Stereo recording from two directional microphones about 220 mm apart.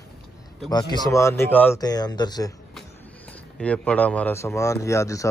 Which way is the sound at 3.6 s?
5° left (ahead or behind).